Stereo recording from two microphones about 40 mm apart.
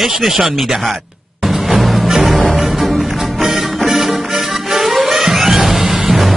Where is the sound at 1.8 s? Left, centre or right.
Centre.